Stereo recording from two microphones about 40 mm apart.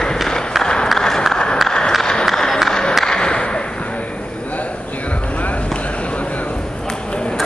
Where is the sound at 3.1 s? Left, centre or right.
Centre.